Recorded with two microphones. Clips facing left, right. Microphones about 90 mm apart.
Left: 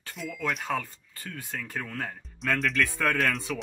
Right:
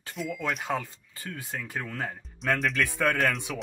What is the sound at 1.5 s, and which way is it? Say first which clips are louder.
Speech: even; 15° right (ahead or behind).